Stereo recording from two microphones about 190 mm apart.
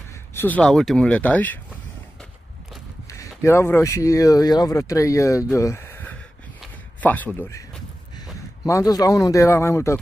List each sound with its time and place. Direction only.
0.3 s speech: 10° left (ahead or behind)
3.4 s speech: 15° left (ahead or behind)
6.6 s a sound: 10° left (ahead or behind)
8.6 s speech: 15° left (ahead or behind)